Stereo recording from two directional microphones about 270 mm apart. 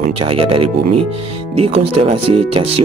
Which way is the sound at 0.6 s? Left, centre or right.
Right.